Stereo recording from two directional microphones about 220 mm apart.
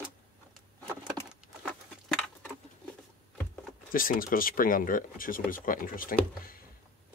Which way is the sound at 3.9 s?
40° left (ahead or behind).